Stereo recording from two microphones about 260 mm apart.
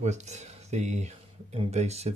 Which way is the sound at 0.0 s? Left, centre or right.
Right.